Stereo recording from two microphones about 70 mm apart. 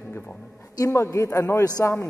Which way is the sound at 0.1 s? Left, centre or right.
Left.